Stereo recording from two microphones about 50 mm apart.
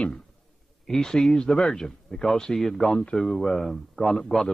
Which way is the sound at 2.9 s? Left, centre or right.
Left.